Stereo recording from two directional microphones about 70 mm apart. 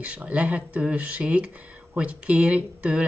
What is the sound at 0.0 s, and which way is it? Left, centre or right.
A woman's voice, centre.